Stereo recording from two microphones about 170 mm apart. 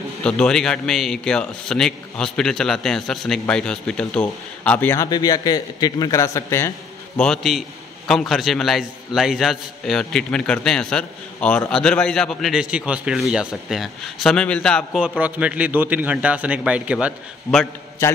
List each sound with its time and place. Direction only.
0.2 s a man's voice: 5° left (ahead or behind)
7.2 s a man's voice: centre (ahead or behind)
15.0 s speech: 5° right (ahead or behind)
18.0 s a man's voice: 15° left (ahead or behind)